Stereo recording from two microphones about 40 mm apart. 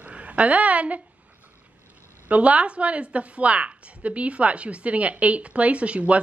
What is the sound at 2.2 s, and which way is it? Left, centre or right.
A woman's voice, right.